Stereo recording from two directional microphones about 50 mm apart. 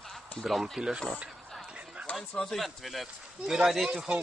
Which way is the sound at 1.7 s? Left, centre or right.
Right.